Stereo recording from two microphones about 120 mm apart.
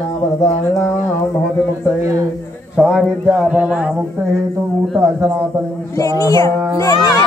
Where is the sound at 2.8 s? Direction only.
10° left (ahead or behind).